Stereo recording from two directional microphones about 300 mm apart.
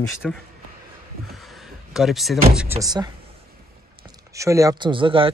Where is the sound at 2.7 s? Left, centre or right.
Centre.